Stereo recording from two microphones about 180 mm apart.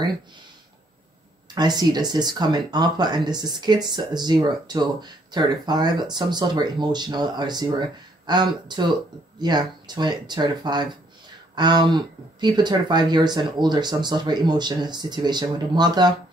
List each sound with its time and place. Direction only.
1.5 s speech: 25° right (ahead or behind)